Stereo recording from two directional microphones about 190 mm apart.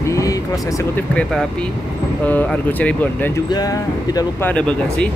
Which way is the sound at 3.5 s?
20° left (ahead or behind).